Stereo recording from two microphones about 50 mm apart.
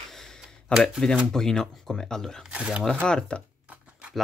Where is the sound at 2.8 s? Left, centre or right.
Centre.